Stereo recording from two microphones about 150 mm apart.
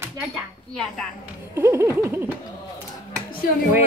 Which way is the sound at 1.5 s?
15° right (ahead or behind).